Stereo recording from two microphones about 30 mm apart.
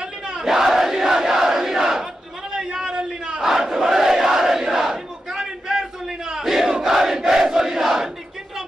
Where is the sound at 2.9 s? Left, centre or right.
Right.